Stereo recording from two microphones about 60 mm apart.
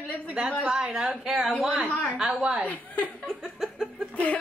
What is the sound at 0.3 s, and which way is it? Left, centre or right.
A woman's voice, centre.